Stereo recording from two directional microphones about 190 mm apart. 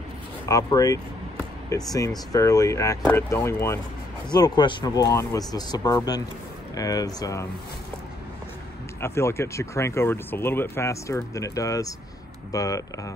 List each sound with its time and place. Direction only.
0.5 s speech: 20° left (ahead or behind)
9.0 s speech: 15° left (ahead or behind)